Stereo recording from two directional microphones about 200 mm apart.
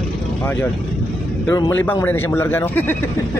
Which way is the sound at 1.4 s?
15° left (ahead or behind).